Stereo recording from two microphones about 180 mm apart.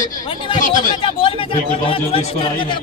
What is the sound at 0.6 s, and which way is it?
Speech, 45° left (ahead or behind).